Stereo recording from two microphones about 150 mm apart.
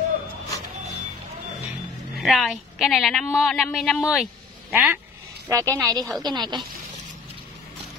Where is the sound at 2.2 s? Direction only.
Centre (ahead or behind).